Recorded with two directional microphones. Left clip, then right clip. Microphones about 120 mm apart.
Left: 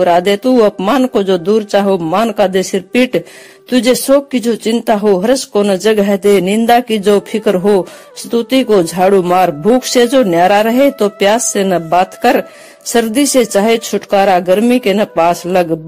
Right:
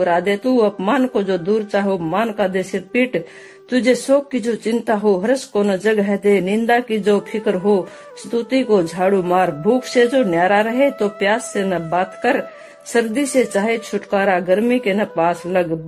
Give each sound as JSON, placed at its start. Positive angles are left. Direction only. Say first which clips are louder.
{"t": 0.0, "sound": "speech", "louder": "left 7 dB", "side_deg": 35}